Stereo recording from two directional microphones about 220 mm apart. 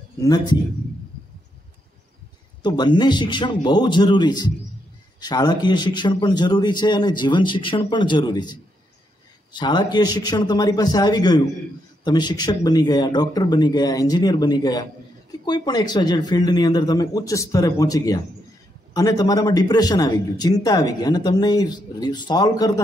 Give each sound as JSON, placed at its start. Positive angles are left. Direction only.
{"t": 0.2, "sound": "speech", "side_deg": 15}
{"t": 2.6, "sound": "a man's voice", "side_deg": 20}